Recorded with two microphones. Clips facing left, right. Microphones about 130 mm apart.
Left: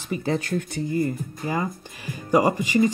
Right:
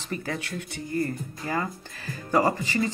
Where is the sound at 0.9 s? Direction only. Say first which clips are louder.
Left 2 dB; 15° left (ahead or behind).